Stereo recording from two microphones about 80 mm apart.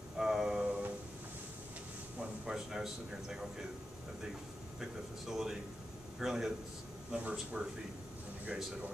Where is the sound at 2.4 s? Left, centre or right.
Centre.